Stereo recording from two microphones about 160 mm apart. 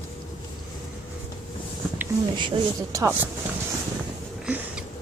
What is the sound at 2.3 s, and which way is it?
Speech, 30° right (ahead or behind).